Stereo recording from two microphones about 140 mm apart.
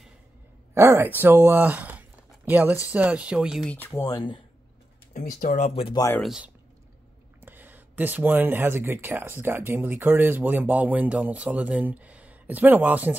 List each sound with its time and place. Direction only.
0.7 s speech: 15° right (ahead or behind)
3.6 s speech: 15° left (ahead or behind)
3.9 s speech: 25° left (ahead or behind)
5.1 s speech: 75° left (ahead or behind)
6.1 s speech: centre (ahead or behind)
7.4 s speech: 15° right (ahead or behind)